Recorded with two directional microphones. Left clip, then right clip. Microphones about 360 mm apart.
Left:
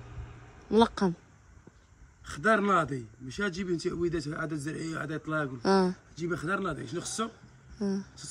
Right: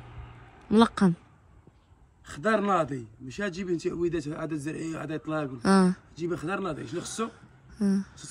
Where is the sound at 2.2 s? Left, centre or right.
Centre.